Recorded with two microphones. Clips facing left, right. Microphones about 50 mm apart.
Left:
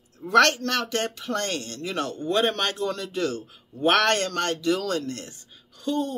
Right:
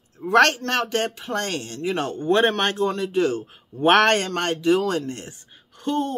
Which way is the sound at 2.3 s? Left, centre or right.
Right.